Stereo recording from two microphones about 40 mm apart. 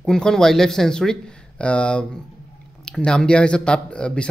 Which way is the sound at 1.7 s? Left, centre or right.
Left.